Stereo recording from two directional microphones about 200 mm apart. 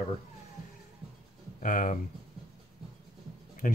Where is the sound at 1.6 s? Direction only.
40° left (ahead or behind).